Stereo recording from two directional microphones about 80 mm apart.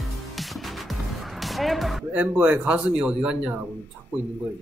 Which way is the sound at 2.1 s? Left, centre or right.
Centre.